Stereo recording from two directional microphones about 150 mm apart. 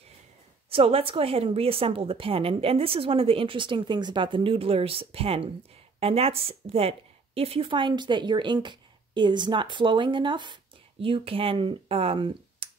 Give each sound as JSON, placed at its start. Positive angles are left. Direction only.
{"t": 0.7, "sound": "a woman's voice", "side_deg": -40}